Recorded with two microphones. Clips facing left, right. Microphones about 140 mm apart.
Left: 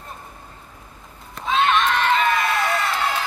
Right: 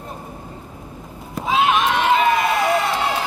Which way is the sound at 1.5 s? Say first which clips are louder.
Right 1 dB; 5° right (ahead or behind).